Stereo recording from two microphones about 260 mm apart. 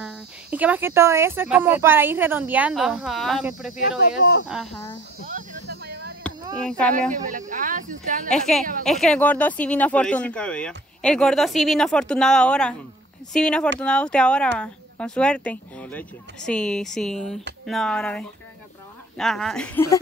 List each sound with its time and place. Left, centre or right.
0.0 s speech: centre
4.2 s speech: left
5.2 s a sound: right
6.9 s speech: right
8.3 s speech: centre